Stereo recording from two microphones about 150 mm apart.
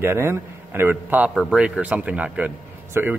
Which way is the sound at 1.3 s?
Centre (ahead or behind).